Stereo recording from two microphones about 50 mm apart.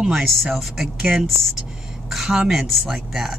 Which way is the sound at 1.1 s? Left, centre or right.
Right.